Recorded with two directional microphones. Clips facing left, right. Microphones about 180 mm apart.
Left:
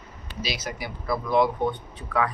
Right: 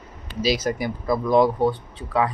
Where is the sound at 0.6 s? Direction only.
45° right (ahead or behind).